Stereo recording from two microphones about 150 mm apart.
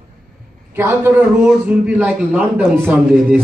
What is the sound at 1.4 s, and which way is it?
Speech, 5° right (ahead or behind).